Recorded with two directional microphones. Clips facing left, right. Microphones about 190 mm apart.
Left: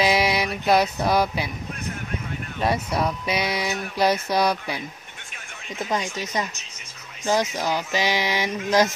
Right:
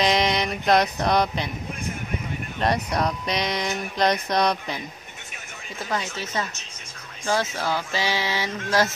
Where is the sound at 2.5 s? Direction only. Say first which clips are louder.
Even; 5° left (ahead or behind).